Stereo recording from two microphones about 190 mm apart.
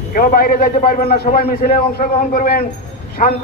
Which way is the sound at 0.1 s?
50° left (ahead or behind).